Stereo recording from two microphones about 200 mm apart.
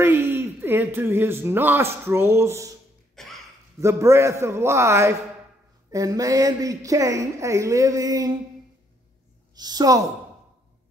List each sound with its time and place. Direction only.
0.0 s speech: 10° right (ahead or behind)
3.2 s a sound: centre (ahead or behind)
3.8 s speech: 15° right (ahead or behind)
9.6 s a woman's voice: 20° right (ahead or behind)